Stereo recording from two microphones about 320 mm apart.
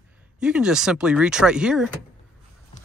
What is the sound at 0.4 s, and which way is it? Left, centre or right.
Speech, centre.